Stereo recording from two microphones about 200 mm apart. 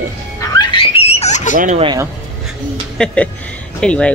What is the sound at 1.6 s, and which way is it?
Speech, 35° right (ahead or behind).